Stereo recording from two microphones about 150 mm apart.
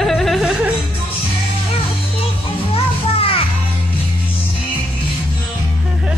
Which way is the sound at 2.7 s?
40° left (ahead or behind).